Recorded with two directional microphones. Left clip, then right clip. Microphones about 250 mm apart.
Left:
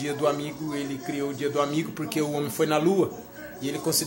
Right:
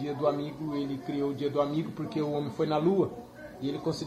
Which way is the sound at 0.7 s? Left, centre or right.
Centre.